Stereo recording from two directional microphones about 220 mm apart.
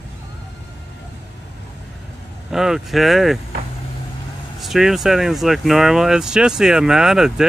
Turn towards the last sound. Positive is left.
turn(degrees=0)  # may be behind; listen again after turning